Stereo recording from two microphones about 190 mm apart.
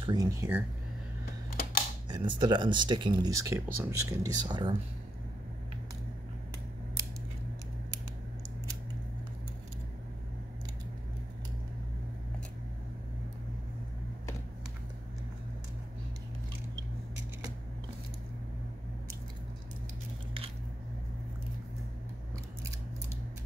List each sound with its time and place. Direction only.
0.0 s speech: 20° right (ahead or behind)
2.0 s speech: 25° right (ahead or behind)